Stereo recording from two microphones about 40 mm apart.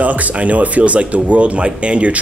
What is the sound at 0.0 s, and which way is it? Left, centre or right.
Speech, right.